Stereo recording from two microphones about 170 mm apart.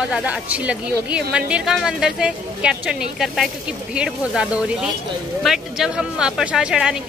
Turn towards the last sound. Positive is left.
turn(degrees=-5)  # may be behind; listen again after turning